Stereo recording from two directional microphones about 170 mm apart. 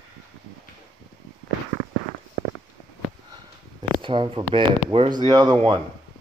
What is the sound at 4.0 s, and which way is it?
Speech, 30° right (ahead or behind).